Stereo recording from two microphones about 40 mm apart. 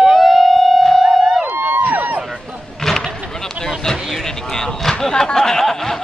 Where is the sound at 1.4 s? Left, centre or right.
Right.